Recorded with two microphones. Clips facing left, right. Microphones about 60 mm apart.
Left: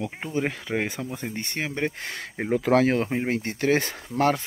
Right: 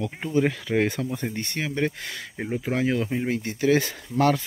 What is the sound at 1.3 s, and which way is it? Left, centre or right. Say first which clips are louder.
Speech: right 1 dB; left.